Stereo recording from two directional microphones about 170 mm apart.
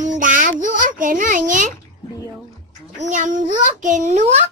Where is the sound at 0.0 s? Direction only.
50° right (ahead or behind).